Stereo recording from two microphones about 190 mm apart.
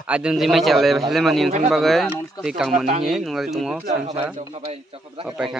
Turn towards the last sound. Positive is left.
turn(degrees=-30)  # may be behind; listen again after turning